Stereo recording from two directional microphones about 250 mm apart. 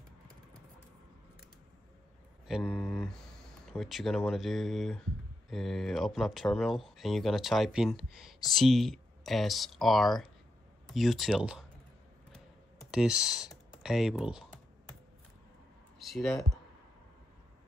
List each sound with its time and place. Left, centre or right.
2.6 s a sound: centre
3.7 s speech: centre
12.9 s speech: centre
16.0 s speech: centre